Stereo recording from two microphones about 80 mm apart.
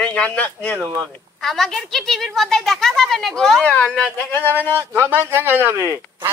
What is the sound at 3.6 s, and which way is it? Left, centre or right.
Speech, centre.